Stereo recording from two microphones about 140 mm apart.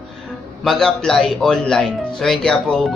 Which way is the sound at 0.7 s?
5° left (ahead or behind).